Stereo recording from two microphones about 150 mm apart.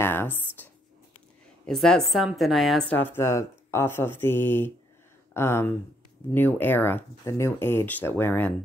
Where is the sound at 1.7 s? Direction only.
5° left (ahead or behind).